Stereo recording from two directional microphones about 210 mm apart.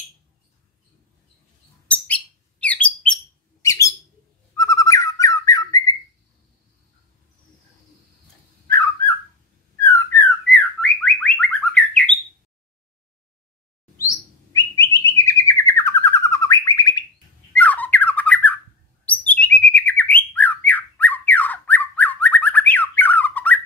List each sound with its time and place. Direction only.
2.0 s bird: 5° left (ahead or behind)
3.6 s a sound: 15° left (ahead or behind)
4.6 s owl: 15° left (ahead or behind)
5.2 s squawk: 15° left (ahead or behind)
8.6 s whistle: 15° left (ahead or behind)
9.8 s bird: 10° left (ahead or behind)
15.0 s bird: 15° left (ahead or behind)